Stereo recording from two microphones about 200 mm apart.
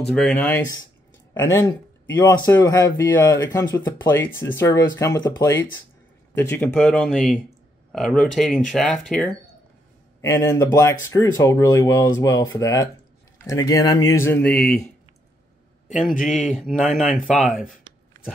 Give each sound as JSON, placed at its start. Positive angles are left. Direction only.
{"t": 0.0, "sound": "speech", "side_deg": 0}
{"t": 10.2, "sound": "speech", "side_deg": 15}
{"t": 16.3, "sound": "speech", "side_deg": 0}